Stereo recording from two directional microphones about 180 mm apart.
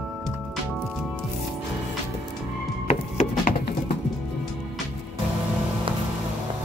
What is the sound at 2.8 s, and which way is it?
Music, 40° left (ahead or behind).